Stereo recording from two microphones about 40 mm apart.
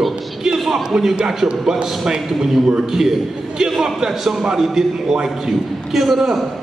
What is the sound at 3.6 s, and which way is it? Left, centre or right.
A man's voice, centre.